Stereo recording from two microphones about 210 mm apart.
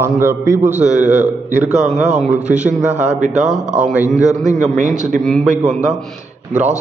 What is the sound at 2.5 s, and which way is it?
Speech, 5° right (ahead or behind).